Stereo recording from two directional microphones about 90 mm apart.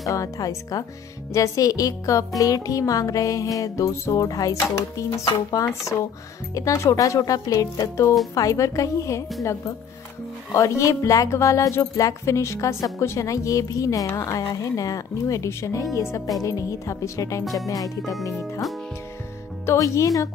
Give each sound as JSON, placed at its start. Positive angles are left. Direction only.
{"t": 0.1, "sound": "speech", "side_deg": 40}
{"t": 18.3, "sound": "speech", "side_deg": 0}
{"t": 19.6, "sound": "speech", "side_deg": 30}